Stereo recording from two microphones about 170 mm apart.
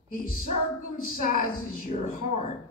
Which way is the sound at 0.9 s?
55° left (ahead or behind).